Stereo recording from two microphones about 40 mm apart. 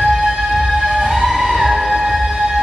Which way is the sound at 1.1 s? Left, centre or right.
Centre.